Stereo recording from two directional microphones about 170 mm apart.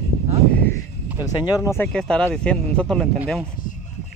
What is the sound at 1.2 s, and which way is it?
Speech, 20° left (ahead or behind).